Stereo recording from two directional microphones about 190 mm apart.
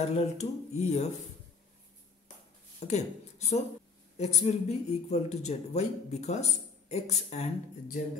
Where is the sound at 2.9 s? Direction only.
35° left (ahead or behind).